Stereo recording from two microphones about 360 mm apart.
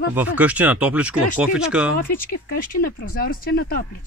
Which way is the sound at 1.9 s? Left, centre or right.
Left.